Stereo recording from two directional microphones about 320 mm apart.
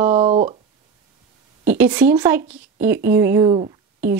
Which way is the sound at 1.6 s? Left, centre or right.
Centre.